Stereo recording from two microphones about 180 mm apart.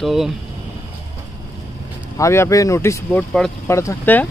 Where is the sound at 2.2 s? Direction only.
15° left (ahead or behind).